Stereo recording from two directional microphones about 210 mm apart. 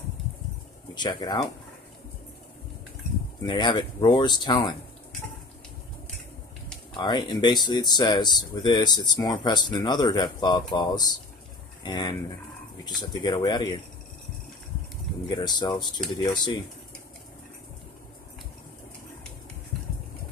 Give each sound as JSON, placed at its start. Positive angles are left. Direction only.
{"t": 0.9, "sound": "speech", "side_deg": 20}
{"t": 3.4, "sound": "speech", "side_deg": 20}
{"t": 6.9, "sound": "speech", "side_deg": 20}
{"t": 15.2, "sound": "speech", "side_deg": 20}